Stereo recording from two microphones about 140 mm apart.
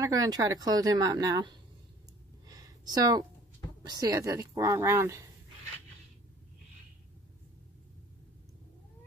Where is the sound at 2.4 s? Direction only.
30° right (ahead or behind).